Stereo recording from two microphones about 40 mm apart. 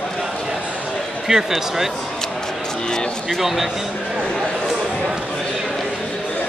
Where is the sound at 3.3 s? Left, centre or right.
Centre.